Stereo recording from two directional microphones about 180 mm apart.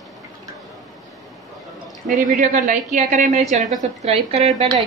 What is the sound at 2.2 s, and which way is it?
A woman's voice, 45° right (ahead or behind).